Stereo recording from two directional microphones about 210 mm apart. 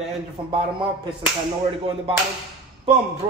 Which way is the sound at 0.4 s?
25° right (ahead or behind).